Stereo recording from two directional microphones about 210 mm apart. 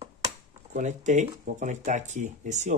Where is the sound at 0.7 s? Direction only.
35° right (ahead or behind).